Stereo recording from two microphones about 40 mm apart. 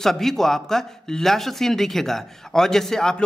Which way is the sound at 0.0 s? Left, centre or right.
Centre.